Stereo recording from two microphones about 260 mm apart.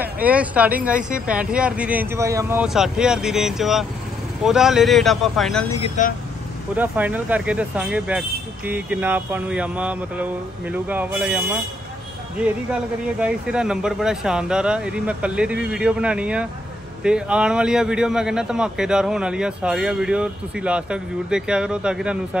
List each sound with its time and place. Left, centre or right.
0.0 s a man's voice: centre
6.0 s speech: left
6.8 s a man's voice: centre